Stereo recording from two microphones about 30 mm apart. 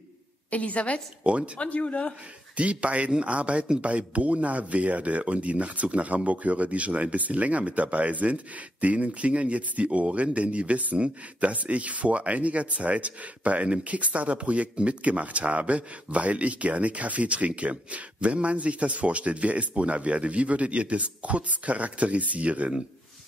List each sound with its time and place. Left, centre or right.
0.5 s speech: left
1.2 s speech: right
1.6 s speech: left
2.5 s speech: right